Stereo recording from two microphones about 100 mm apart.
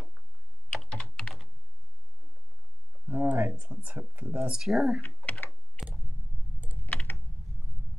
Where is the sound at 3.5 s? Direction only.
15° right (ahead or behind).